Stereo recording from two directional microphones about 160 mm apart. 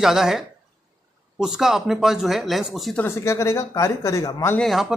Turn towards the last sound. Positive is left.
turn(degrees=0)  # may be behind; listen again after turning